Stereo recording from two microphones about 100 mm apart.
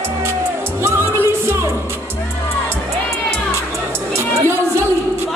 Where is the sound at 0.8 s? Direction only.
25° right (ahead or behind).